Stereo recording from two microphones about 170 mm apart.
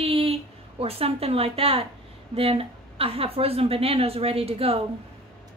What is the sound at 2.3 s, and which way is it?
A woman's voice, 35° right (ahead or behind).